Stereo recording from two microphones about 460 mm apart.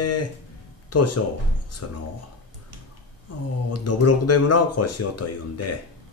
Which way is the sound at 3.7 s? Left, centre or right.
Left.